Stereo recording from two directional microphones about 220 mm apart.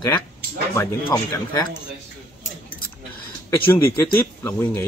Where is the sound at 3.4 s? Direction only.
10° left (ahead or behind).